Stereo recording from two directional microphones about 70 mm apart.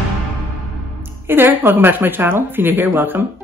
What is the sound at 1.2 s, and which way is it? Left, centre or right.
Speech, right.